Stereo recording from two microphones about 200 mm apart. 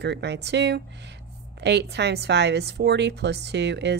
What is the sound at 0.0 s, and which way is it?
A woman's voice, 60° right (ahead or behind).